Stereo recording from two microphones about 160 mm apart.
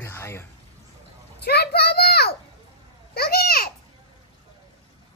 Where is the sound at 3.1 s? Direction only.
75° left (ahead or behind).